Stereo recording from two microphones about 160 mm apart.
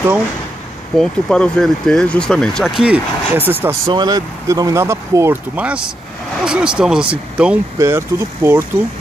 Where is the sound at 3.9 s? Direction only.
25° right (ahead or behind); by 7.5 s 5° right (ahead or behind).